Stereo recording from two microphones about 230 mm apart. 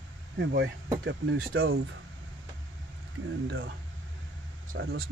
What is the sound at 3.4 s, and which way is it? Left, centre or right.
Speech, right.